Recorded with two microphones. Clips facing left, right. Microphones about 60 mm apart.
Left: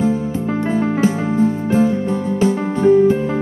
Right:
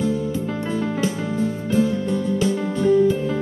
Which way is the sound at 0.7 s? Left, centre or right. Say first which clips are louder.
Left 6 dB; left.